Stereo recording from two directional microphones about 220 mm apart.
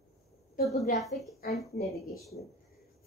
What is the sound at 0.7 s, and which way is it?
Speech, 30° left (ahead or behind).